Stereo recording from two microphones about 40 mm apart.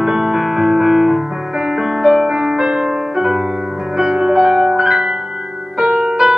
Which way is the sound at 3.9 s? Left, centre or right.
Centre.